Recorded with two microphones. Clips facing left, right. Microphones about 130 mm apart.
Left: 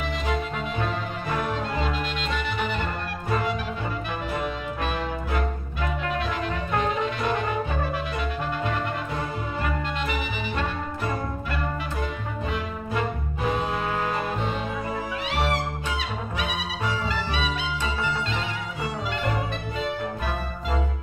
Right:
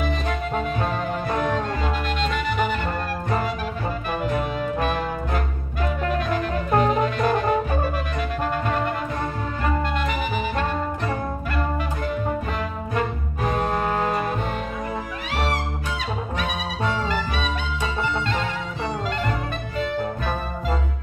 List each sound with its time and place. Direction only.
5.8 s music: 40° right (ahead or behind)
13.6 s music: 45° right (ahead or behind)